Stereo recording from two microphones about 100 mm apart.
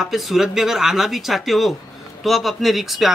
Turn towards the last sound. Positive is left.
turn(degrees=0)  # may be behind; listen again after turning